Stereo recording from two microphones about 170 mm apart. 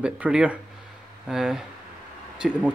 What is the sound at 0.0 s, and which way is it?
Speech, 5° right (ahead or behind).